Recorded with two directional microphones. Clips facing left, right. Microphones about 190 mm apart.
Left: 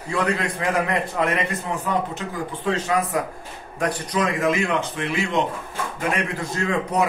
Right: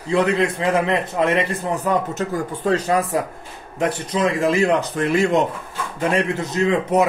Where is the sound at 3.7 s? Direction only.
25° right (ahead or behind); by 5.4 s 45° right (ahead or behind).